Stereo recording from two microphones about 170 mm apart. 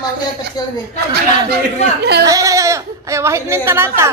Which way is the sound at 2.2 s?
20° right (ahead or behind).